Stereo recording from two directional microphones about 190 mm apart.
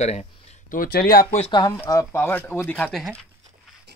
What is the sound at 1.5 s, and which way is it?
Speech, 20° left (ahead or behind).